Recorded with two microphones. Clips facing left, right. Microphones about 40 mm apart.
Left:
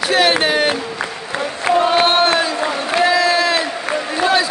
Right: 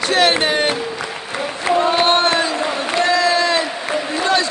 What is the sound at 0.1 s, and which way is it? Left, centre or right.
Speech, centre.